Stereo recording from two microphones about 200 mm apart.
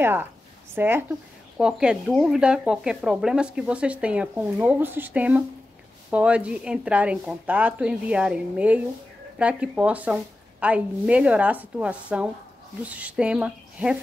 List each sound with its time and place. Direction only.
0.0 s a woman's voice: 10° right (ahead or behind)